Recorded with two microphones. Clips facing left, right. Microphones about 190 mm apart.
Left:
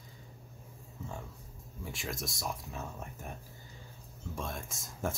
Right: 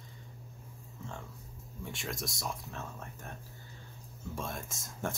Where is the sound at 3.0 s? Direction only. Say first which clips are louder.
Left 2 dB; 15° left (ahead or behind).